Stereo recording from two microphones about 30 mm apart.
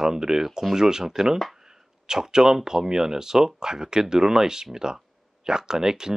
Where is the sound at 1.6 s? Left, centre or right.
Right.